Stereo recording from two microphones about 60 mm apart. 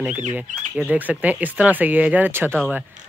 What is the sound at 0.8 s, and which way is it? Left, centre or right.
Speech, right.